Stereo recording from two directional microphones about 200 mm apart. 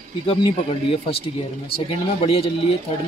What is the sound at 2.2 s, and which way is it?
Speech, 30° left (ahead or behind).